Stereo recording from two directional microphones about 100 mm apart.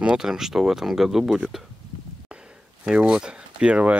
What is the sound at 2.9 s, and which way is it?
Speech, 10° right (ahead or behind).